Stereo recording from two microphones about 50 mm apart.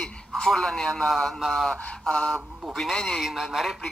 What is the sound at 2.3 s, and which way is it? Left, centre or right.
Speech, centre.